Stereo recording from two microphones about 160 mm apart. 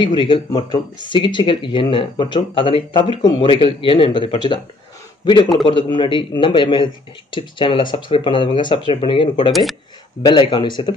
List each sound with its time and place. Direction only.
0.0 s a man's voice: 30° left (ahead or behind)